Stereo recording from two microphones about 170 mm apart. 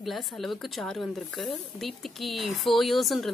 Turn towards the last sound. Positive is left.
turn(degrees=0)  # may be behind; listen again after turning